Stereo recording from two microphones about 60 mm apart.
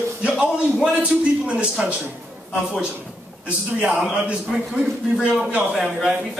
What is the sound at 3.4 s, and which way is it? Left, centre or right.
Speech, right.